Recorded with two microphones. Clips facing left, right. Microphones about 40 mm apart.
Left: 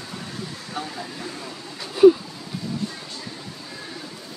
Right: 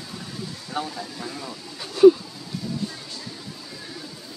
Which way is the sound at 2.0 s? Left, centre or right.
Centre.